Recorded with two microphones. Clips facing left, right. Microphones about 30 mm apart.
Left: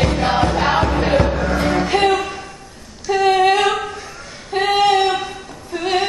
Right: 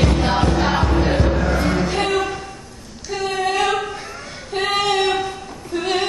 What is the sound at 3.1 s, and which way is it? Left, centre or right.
Female singing, left.